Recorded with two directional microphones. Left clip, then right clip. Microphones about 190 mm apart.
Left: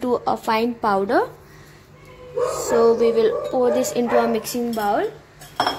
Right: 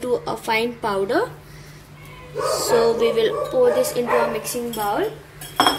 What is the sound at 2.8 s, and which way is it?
A woman's voice, 35° left (ahead or behind).